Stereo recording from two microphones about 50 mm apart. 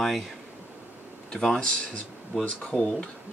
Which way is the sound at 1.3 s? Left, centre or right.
Centre.